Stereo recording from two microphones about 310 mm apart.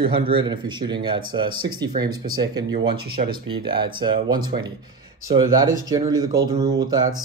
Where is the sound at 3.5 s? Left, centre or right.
Centre.